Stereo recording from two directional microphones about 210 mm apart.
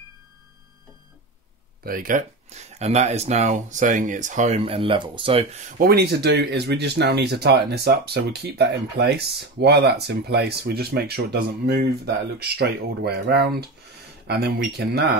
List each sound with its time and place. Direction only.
1.8 s speech: 40° right (ahead or behind); by 5.5 s 25° right (ahead or behind)
5.8 s speech: 50° right (ahead or behind)